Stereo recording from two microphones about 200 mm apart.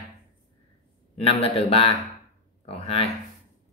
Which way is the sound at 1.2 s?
30° left (ahead or behind).